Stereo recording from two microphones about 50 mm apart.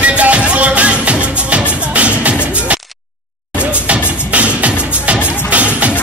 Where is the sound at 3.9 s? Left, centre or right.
Right.